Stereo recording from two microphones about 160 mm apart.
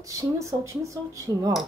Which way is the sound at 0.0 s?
20° right (ahead or behind).